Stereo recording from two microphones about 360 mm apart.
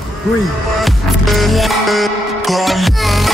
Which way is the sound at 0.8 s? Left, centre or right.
Centre.